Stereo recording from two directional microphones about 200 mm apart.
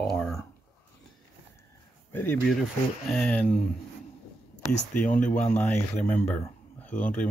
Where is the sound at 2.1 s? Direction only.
10° left (ahead or behind).